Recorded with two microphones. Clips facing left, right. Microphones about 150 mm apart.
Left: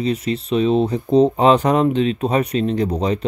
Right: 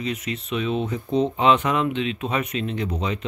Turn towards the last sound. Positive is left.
turn(degrees=35)  # may be behind; listen again after turning